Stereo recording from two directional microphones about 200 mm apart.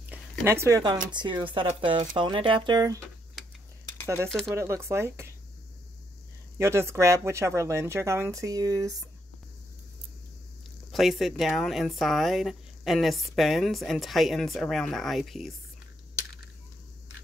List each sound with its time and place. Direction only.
0.1 s zipper: 15° right (ahead or behind)
1.1 s speech: 20° right (ahead or behind)
4.3 s speech: centre (ahead or behind)
4.6 s speech: 15° right (ahead or behind)
6.6 s speech: 15° right (ahead or behind)
10.9 s speech: centre (ahead or behind)